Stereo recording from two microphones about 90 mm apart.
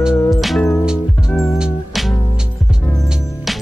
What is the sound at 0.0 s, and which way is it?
Music, centre (ahead or behind).